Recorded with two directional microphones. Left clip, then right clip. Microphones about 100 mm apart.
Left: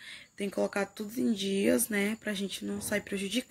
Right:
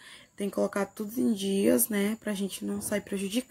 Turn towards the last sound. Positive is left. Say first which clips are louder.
# right 1 dB
turn(degrees=-35)  # may be behind; listen again after turning